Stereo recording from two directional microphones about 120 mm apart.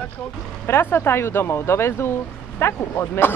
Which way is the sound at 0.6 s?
20° left (ahead or behind).